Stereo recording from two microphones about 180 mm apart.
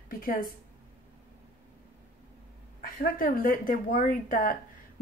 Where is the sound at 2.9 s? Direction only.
50° left (ahead or behind).